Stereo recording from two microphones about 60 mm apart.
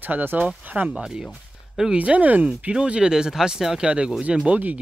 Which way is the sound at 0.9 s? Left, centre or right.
Centre.